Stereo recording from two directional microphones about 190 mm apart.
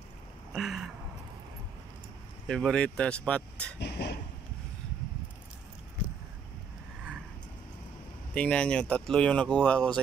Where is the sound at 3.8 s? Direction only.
60° left (ahead or behind).